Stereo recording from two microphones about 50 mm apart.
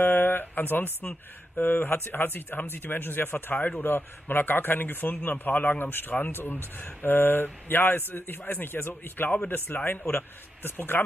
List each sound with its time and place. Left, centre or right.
0.0 s speech: left
9.7 s a man's voice: left
10.1 s speech: left